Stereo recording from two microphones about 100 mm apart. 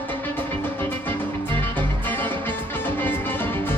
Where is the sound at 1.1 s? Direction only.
20° left (ahead or behind).